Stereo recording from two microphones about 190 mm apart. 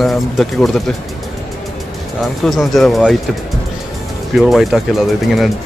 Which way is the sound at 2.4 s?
Centre (ahead or behind).